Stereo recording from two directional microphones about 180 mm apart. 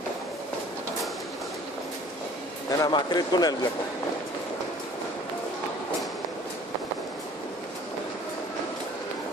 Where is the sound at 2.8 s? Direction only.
20° left (ahead or behind).